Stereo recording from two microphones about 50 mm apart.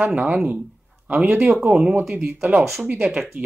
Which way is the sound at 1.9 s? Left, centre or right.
Right.